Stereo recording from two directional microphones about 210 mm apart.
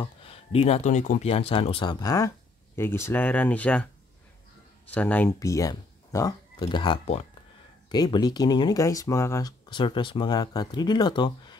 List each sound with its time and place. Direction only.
0.0 s speech: 25° left (ahead or behind)